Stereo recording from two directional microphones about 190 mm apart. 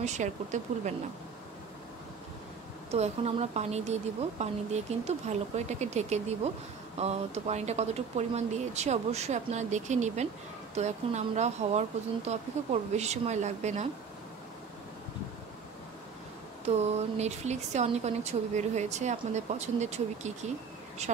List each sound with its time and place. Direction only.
0.0 s speech: 40° right (ahead or behind)
2.9 s speech: 35° right (ahead or behind)
12.9 s speech: 35° right (ahead or behind)
16.6 s speech: 35° right (ahead or behind)